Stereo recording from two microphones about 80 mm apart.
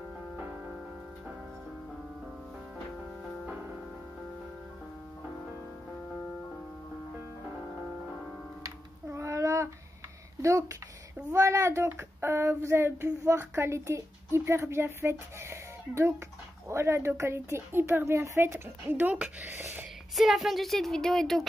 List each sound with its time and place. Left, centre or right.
0.4 s music: centre
8.6 s a sound: right
11.2 s a woman's voice: right
20.2 s speech: centre